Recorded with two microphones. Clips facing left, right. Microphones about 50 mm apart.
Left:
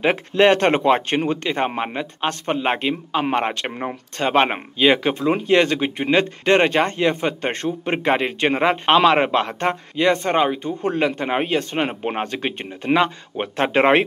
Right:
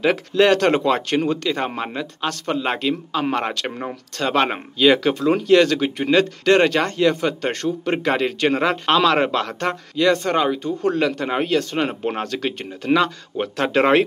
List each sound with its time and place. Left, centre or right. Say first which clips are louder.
0.0 s speech: left 1 dB; left